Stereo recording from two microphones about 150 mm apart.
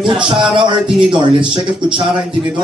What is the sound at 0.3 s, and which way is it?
Speech, 30° right (ahead or behind).